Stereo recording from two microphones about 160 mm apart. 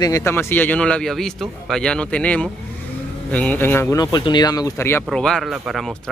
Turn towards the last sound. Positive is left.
turn(degrees=0)  # may be behind; listen again after turning